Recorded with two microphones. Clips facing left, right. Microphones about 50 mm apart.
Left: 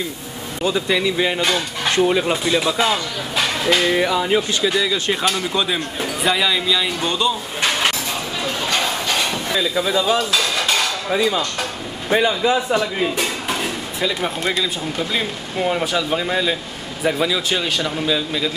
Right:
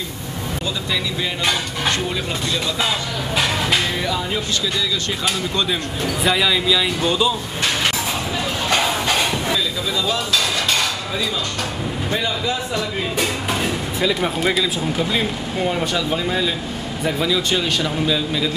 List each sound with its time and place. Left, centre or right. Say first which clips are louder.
0.8 s speech: left 5 dB; left
1.4 s speech: left 1 dB; centre
2.0 s speech: left 7 dB; left
2.4 s speech: left 4 dB; centre
3.9 s speech: left 5 dB; left
5.2 s speech: left 2 dB; centre
8.6 s a sound: right 3 dB; centre
9.8 s speech: left 4 dB; left
10.1 s dishes: left 2 dB; centre
12.1 s speech: left 7 dB; left
13.2 s speech: right 1 dB; centre